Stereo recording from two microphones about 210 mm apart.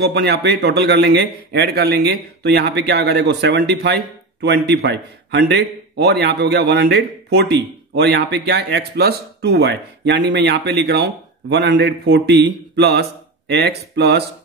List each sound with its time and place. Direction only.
0.1 s a man's voice: 50° right (ahead or behind)